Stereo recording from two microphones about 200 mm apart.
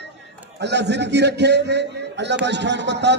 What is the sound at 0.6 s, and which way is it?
A man's voice, 60° right (ahead or behind).